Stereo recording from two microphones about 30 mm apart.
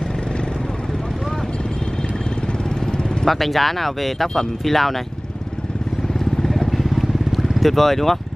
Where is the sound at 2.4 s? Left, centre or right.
Left.